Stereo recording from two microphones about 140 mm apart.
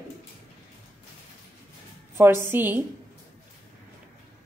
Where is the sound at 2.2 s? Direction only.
15° right (ahead or behind).